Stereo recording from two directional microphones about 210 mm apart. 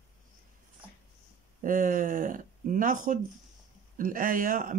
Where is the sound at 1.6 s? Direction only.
40° right (ahead or behind).